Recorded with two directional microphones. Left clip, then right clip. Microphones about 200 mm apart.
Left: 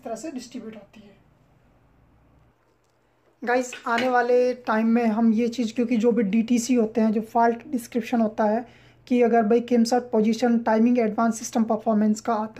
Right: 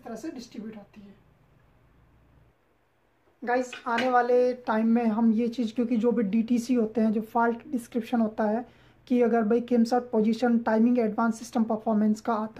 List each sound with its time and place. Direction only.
0.1 s a woman's voice: 35° left (ahead or behind)
3.3 s speech: 15° left (ahead or behind)